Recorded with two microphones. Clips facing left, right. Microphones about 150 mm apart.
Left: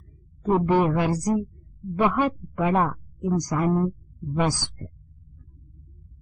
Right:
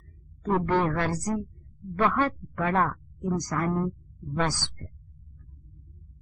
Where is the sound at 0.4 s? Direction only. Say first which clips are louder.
Left 4 dB; 15° left (ahead or behind).